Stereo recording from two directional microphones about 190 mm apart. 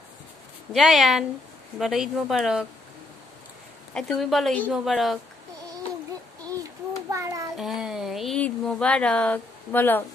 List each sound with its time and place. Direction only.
0.7 s speech: centre (ahead or behind)
3.9 s speech: centre (ahead or behind)
6.4 s child singing: 20° right (ahead or behind)
7.5 s a sound: centre (ahead or behind)